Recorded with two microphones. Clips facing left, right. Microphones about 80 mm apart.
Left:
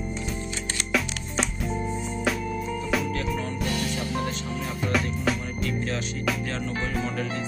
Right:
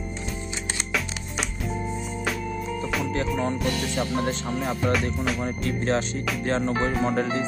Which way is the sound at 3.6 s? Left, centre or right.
Centre.